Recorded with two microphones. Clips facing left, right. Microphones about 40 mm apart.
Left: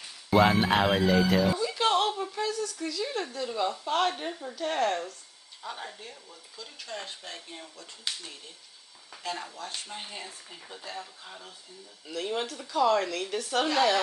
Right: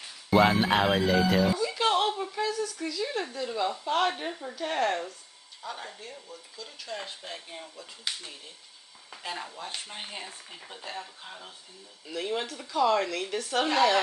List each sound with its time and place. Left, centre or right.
0.3 s speech: centre
5.6 s speech: centre; by 11.1 s right
12.1 s speech: centre